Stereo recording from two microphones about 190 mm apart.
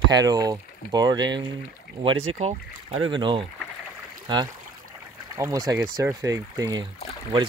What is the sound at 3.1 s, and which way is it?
Speech, 25° right (ahead or behind).